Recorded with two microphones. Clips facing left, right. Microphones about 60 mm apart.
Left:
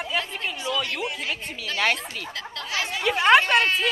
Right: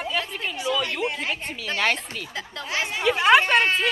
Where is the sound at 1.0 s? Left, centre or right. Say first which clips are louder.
Right 3 dB; right.